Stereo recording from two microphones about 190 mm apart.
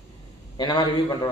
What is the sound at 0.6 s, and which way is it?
Speech, 20° left (ahead or behind).